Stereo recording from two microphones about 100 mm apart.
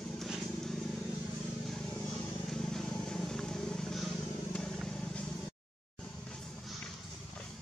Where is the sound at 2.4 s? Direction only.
5° left (ahead or behind).